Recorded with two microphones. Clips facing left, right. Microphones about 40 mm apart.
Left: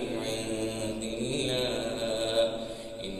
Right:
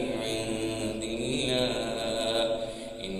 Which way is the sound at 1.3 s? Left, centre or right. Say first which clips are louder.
Right 3 dB; right.